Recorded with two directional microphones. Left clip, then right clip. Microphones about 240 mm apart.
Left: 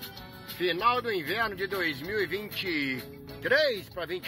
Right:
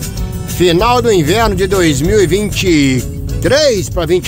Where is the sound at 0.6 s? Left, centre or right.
Centre.